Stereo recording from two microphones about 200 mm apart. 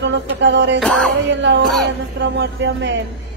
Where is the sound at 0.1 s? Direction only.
60° right (ahead or behind).